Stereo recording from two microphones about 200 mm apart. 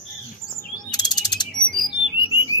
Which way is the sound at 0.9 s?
20° left (ahead or behind).